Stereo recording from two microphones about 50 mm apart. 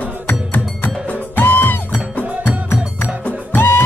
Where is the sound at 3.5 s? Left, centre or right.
Left.